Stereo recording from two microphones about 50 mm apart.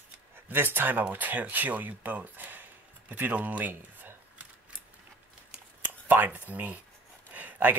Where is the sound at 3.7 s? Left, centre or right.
Right.